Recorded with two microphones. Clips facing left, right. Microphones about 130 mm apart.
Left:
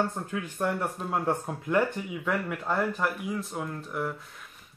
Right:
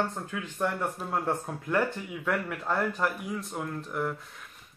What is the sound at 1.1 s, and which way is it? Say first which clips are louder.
Speech: left 3 dB; 15° left (ahead or behind).